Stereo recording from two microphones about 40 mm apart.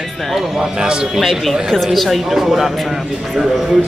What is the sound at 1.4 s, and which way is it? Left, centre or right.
A man's voice, centre.